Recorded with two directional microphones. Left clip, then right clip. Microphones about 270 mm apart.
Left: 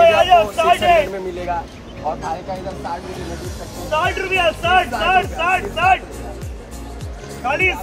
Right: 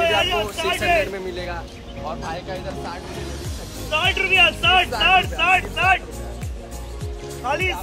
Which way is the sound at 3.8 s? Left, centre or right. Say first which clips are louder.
Left 1 dB; centre.